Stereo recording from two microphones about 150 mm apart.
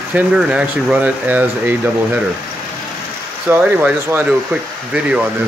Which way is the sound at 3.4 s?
15° right (ahead or behind).